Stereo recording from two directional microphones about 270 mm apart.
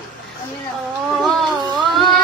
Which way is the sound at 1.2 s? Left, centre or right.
Centre.